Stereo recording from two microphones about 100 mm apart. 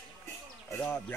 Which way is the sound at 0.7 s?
20° left (ahead or behind).